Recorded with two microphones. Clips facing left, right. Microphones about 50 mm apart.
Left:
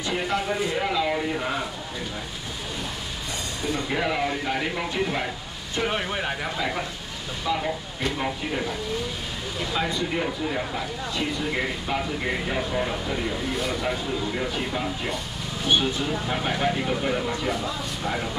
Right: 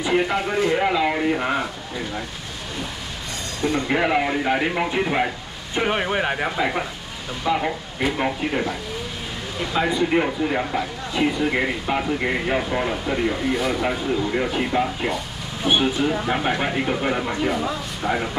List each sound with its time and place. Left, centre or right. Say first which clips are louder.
0.0 s speech: right 5 dB; centre
3.9 s speech: right 5 dB; right
10.1 s speech: right 6 dB; right
13.5 s speech: right 5 dB; centre
13.7 s speech: right 5 dB; right
17.5 s speech: right 4 dB; centre